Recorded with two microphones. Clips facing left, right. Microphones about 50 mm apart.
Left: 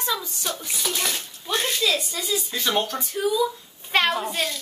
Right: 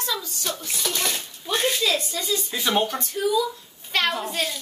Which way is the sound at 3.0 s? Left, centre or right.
Centre.